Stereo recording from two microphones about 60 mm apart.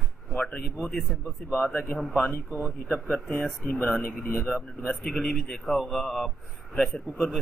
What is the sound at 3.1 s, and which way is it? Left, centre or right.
Speech, left.